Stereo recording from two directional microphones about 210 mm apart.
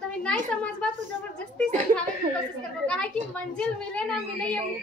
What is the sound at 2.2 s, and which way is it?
Speech, 45° right (ahead or behind).